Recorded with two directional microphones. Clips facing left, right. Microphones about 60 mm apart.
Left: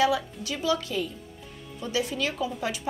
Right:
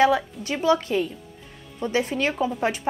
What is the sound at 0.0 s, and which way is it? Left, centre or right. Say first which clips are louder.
A woman's voice: right 5 dB; right.